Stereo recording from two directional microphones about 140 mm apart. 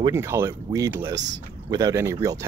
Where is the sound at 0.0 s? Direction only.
20° right (ahead or behind).